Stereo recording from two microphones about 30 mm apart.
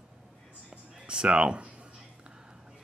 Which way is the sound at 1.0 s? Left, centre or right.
Right.